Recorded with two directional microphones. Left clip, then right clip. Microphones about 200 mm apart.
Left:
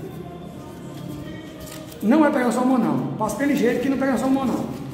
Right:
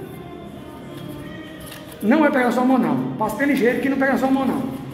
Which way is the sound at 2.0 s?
15° right (ahead or behind).